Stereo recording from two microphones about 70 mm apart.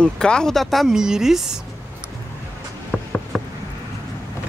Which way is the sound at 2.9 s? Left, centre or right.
Centre.